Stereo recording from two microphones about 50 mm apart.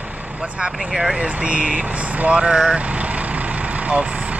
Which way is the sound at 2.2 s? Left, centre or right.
Centre.